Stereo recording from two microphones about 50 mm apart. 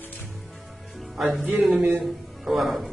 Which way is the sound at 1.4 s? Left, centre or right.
Right.